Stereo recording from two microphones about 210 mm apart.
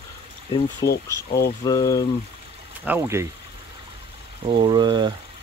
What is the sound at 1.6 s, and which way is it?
Speech, 15° left (ahead or behind).